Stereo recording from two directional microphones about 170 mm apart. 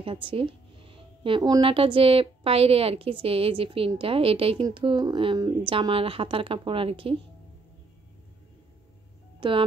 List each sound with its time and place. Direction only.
0.0 s speech: 30° right (ahead or behind)
9.4 s speech: 30° right (ahead or behind)